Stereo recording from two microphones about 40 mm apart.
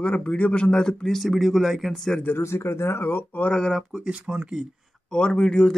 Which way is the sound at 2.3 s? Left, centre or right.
Left.